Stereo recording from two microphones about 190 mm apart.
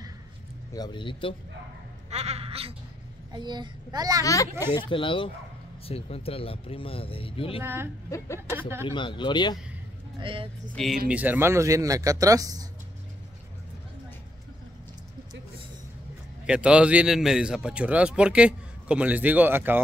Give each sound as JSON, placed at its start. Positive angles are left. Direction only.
{"t": 0.7, "sound": "speech", "side_deg": 25}
{"t": 2.0, "sound": "a woman's voice", "side_deg": -35}
{"t": 4.2, "sound": "speech", "side_deg": 15}
{"t": 7.6, "sound": "speech", "side_deg": -10}
{"t": 8.8, "sound": "speech", "side_deg": 25}
{"t": 10.2, "sound": "a child's voice", "side_deg": -30}
{"t": 10.7, "sound": "a man's voice", "side_deg": 0}
{"t": 16.4, "sound": "a man's voice", "side_deg": -5}